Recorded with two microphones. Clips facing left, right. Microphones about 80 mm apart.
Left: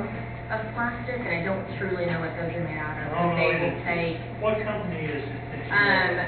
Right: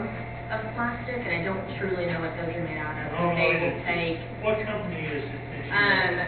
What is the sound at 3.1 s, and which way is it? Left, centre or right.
Speech, left.